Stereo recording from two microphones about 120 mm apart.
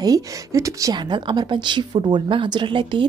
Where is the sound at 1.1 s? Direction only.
40° right (ahead or behind).